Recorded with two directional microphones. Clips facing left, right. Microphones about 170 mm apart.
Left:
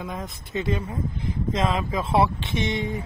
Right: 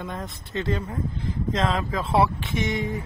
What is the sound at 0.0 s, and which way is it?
Speech, centre (ahead or behind).